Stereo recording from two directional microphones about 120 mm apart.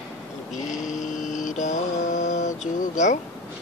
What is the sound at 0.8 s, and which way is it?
Mantra, 90° left.